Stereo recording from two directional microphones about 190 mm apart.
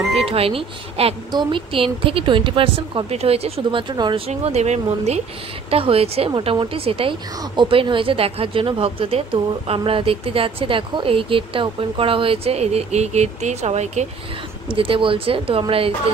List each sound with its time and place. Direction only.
0.1 s speech: 30° right (ahead or behind)
4.3 s speech: 35° right (ahead or behind)